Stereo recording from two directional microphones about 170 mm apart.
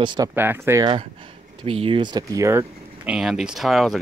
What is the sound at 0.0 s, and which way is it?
Speech, 25° right (ahead or behind).